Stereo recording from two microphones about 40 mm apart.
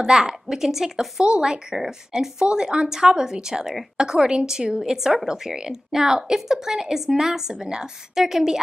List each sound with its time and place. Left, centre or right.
0.3 s speech: centre
2.4 s speech: right